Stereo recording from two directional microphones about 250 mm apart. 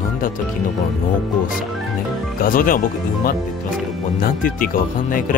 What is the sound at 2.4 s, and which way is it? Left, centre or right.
Speech, left.